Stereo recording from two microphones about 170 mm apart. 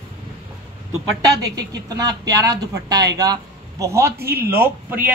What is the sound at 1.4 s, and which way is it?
A man's voice, 20° right (ahead or behind).